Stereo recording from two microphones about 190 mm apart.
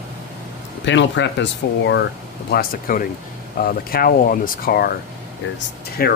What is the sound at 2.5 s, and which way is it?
Speech, 50° left (ahead or behind).